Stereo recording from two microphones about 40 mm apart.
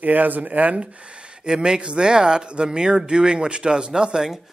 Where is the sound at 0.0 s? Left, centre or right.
Right.